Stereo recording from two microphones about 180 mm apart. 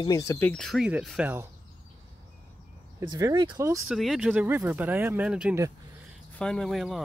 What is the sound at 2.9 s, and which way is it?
Speech, 20° right (ahead or behind).